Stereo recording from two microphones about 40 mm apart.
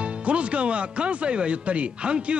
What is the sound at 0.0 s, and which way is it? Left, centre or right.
Speech, right.